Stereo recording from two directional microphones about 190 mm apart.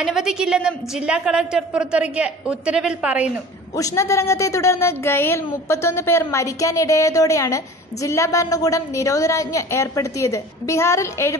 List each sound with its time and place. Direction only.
0.0 s a woman's voice: 5° right (ahead or behind)
3.7 s a woman's voice: 15° left (ahead or behind)